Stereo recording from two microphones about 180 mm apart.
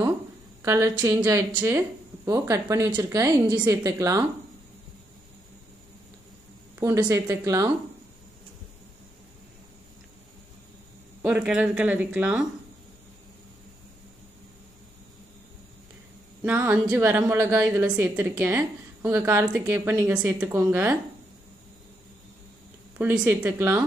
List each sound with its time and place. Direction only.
0.6 s speech: 15° right (ahead or behind)
6.8 s speech: 20° right (ahead or behind)
11.2 s speech: 5° right (ahead or behind)
16.4 s speech: 10° right (ahead or behind)
22.9 s speech: 10° right (ahead or behind)